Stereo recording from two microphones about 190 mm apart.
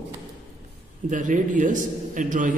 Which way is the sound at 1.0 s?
40° right (ahead or behind).